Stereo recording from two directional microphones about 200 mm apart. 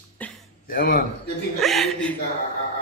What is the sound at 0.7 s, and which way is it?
Speech, 45° left (ahead or behind).